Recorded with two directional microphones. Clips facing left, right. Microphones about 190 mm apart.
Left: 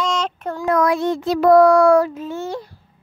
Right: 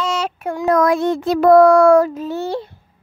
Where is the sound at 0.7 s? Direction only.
45° right (ahead or behind).